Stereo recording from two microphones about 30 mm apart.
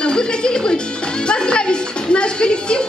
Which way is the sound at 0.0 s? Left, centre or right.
Left.